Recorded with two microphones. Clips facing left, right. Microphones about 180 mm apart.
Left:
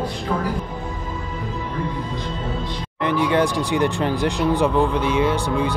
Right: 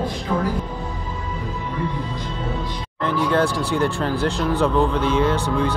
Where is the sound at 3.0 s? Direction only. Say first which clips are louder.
Left 1 dB; 15° left (ahead or behind).